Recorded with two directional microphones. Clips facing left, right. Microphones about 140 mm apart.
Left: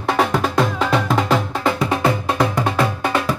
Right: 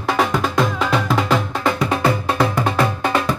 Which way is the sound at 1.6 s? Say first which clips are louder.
Even; 20° left (ahead or behind).